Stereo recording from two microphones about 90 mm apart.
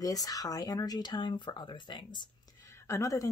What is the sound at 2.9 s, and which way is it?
Speech, 35° left (ahead or behind).